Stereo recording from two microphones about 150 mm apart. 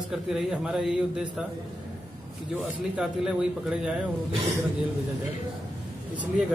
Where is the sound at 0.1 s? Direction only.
Centre (ahead or behind).